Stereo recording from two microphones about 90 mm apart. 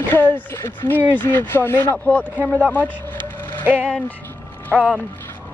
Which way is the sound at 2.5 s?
15° left (ahead or behind).